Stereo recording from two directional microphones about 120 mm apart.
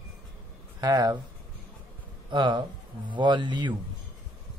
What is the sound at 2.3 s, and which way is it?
Speech, 40° right (ahead or behind).